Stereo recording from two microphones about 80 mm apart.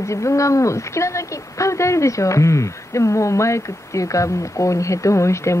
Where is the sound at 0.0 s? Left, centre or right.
Left.